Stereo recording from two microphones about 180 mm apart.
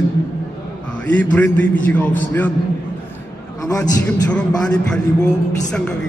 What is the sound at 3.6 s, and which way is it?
Speech, 20° left (ahead or behind).